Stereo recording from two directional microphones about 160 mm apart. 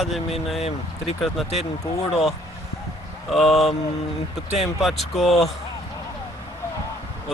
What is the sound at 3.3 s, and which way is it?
Speech, centre (ahead or behind).